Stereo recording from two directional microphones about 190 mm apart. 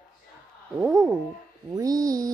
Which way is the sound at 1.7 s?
20° right (ahead or behind).